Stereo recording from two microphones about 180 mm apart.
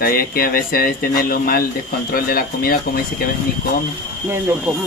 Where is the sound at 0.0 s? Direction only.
55° left (ahead or behind).